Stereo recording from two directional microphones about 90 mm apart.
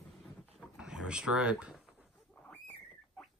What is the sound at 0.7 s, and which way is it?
Speech, 10° right (ahead or behind).